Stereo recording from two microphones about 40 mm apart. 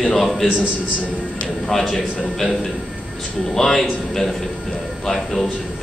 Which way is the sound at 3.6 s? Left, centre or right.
Centre.